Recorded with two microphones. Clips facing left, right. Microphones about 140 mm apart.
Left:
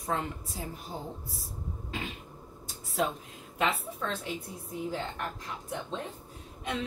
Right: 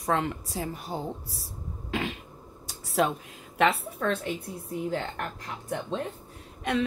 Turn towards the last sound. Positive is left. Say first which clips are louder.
# right 7 dB
turn(degrees=-70)  # may be behind; listen again after turning